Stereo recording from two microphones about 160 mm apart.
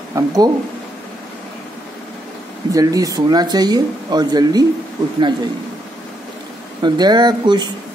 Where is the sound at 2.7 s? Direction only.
20° right (ahead or behind).